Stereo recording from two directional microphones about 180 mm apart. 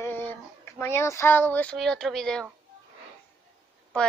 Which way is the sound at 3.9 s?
5° left (ahead or behind).